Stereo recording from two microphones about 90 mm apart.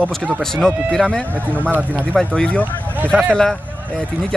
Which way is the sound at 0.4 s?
5° left (ahead or behind).